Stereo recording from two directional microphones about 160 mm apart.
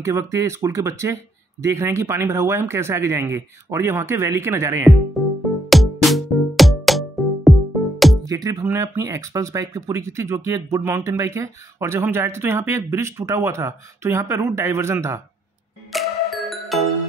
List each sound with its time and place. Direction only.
0.0 s speech: 15° right (ahead or behind)
5.2 s music: centre (ahead or behind)
8.3 s speech: 20° right (ahead or behind)
15.9 s music: centre (ahead or behind)